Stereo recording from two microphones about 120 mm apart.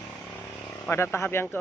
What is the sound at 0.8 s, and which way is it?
Speech, 20° left (ahead or behind).